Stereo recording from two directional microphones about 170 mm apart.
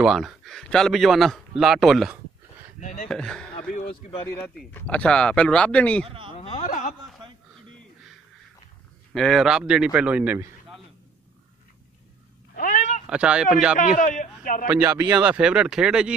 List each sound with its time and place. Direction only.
0.0 s speech: centre (ahead or behind)
2.8 s speech: 45° left (ahead or behind)
3.1 s speech: 5° left (ahead or behind)
4.6 s speech: 10° left (ahead or behind)
6.0 s speech: 30° right (ahead or behind)
6.3 s speech: 40° left (ahead or behind)
9.1 s speech: centre (ahead or behind)
12.5 s cat: 50° left (ahead or behind)
13.0 s speech: 5° right (ahead or behind)
13.7 s speech: 50° left (ahead or behind)
15.0 s speech: 5° right (ahead or behind)